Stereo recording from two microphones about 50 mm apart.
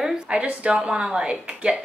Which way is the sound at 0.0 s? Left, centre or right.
Centre.